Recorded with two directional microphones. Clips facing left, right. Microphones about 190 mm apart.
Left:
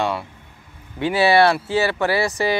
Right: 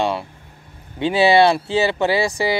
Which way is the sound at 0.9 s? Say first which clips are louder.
Right 2 dB; 20° right (ahead or behind).